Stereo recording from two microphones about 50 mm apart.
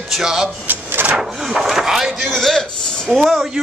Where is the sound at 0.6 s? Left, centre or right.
Right.